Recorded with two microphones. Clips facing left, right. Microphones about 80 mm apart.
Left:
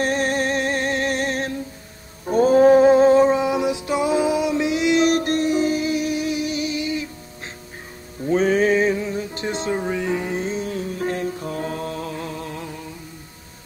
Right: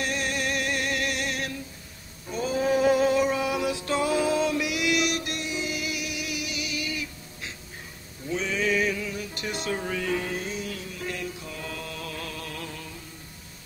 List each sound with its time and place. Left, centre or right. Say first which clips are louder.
0.0 s music: left 8 dB; left
2.2 s a sound: left 13 dB; left
8.3 s music: left 10 dB; left